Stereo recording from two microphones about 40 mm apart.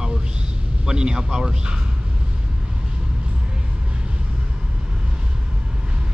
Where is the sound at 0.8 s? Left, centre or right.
Centre.